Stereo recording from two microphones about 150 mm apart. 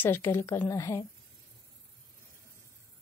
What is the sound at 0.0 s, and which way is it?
A woman's voice, 15° left (ahead or behind).